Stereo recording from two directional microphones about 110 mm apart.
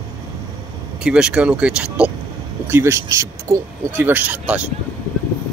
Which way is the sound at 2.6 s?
25° right (ahead or behind).